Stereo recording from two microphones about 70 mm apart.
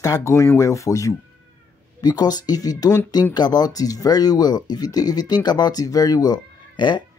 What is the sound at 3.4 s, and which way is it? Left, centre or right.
Speech, left.